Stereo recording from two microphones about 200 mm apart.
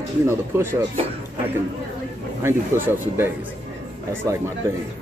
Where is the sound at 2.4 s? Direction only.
10° right (ahead or behind).